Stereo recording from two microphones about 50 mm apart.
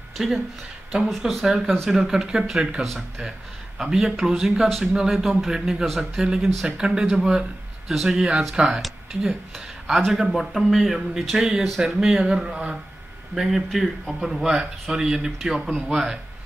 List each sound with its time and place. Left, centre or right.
1.2 s a man's voice: centre
8.2 s a man's voice: centre
13.3 s a man's voice: centre